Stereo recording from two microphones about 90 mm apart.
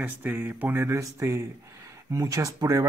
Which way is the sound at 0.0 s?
20° right (ahead or behind).